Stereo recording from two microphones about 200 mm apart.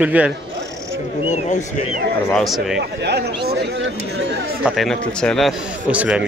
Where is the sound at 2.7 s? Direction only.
55° right (ahead or behind).